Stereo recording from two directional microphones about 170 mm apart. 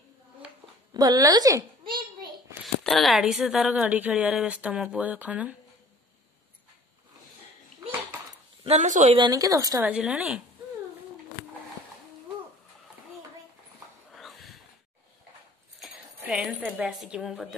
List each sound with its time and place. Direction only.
0.9 s a child's voice: 20° right (ahead or behind)
2.6 s speech: centre (ahead or behind)
8.6 s speech: 45° right (ahead or behind)
9.1 s speech: 25° right (ahead or behind)
9.8 s speech: 5° right (ahead or behind)
14.1 s snort: centre (ahead or behind)
15.8 s speech: 5° right (ahead or behind)